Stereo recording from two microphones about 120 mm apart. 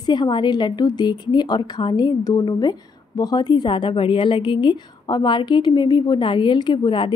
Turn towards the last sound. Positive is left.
turn(degrees=40)  # may be behind; listen again after turning